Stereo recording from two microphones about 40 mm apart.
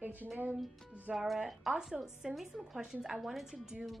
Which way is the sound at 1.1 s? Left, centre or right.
Right.